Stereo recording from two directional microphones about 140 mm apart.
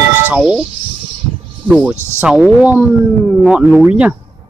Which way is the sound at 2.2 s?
5° right (ahead or behind).